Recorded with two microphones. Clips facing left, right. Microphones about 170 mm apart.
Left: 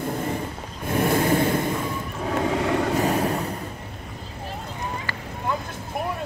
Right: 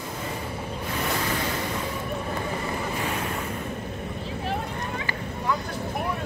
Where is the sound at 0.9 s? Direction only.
50° left (ahead or behind).